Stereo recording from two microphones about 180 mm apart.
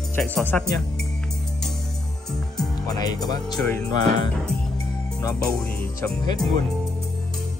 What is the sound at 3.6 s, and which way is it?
Speech, 10° left (ahead or behind).